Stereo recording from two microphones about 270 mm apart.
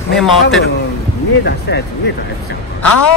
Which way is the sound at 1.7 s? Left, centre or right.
Left.